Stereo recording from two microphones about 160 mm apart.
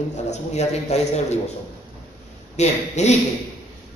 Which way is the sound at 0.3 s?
45° left (ahead or behind).